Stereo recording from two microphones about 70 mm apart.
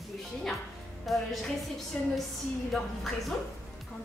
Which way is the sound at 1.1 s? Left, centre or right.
Centre.